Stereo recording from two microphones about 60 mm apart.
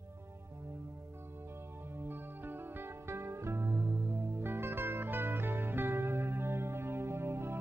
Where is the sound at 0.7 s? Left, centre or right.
Right.